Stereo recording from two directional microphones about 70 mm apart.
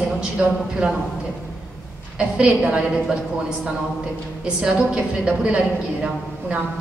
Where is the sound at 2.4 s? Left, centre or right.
Centre.